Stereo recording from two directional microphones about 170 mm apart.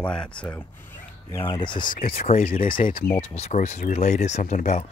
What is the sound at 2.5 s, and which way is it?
Speech, 55° left (ahead or behind).